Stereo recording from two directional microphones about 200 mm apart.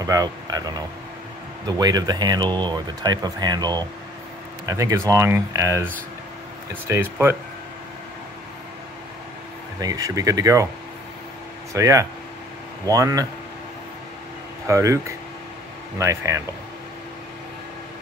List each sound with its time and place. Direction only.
0.0 s speech: 20° right (ahead or behind)
9.8 s speech: 20° right (ahead or behind)
11.7 s speech: 15° right (ahead or behind)
14.7 s speech: 15° right (ahead or behind)